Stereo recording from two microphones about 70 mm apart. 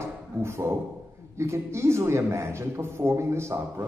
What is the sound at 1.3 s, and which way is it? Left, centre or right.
A man's voice, right.